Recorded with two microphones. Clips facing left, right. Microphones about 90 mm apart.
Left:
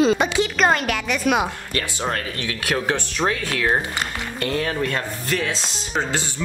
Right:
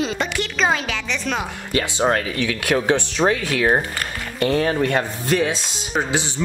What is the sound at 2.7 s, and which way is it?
Speech, 15° right (ahead or behind).